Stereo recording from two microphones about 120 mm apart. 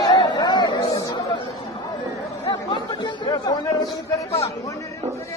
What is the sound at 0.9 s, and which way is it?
Chatter, 30° left (ahead or behind).